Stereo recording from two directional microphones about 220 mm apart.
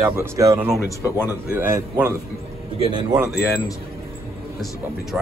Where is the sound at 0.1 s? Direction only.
15° right (ahead or behind).